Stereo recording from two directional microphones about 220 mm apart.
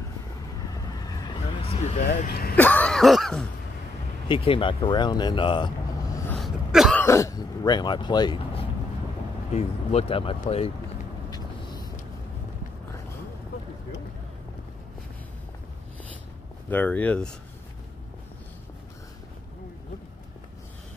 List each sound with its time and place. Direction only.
1.6 s a sound: 25° left (ahead or behind)
2.0 s speech: 45° left (ahead or behind)
2.5 s speech: 5° left (ahead or behind)
4.3 s speech: 25° left (ahead or behind)
6.3 s a sound: centre (ahead or behind)
7.1 s speech: 15° left (ahead or behind)
11.2 s vehicle: 20° left (ahead or behind)
16.6 s speech: 5° left (ahead or behind)